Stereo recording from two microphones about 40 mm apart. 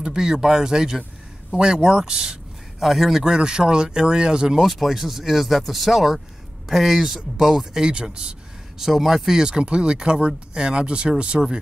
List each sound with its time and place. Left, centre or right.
0.0 s speech: centre
2.8 s speech: centre
3.3 s speech: right
4.6 s speech: centre
7.9 s speech: right
8.7 s speech: centre
9.5 s speech: right